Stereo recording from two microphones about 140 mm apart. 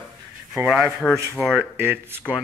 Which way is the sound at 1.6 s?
15° right (ahead or behind).